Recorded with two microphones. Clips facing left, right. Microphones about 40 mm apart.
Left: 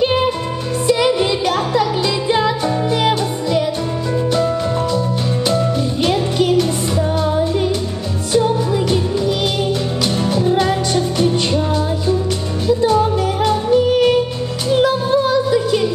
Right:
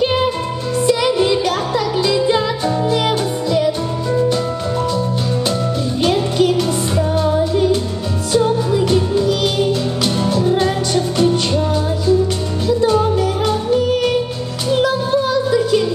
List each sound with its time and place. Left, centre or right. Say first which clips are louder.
0.8 s music: even; left
4.9 s music: even; left
10.0 s music: right 1 dB; left
14.8 s music: left 2 dB; left